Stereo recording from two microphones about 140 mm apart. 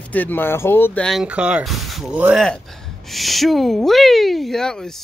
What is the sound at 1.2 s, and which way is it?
Speech, 5° right (ahead or behind).